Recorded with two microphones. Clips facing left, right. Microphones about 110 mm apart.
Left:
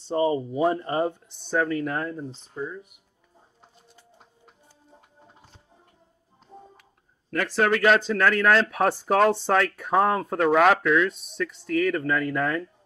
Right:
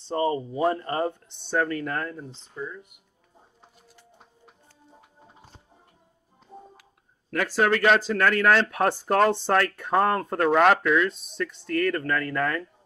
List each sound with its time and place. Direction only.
0.1 s speech: 15° left (ahead or behind)
1.3 s speech: centre (ahead or behind)
7.2 s speech: 5° right (ahead or behind); by 12.6 s 15° left (ahead or behind)